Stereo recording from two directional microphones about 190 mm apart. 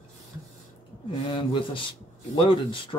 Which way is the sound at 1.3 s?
25° left (ahead or behind).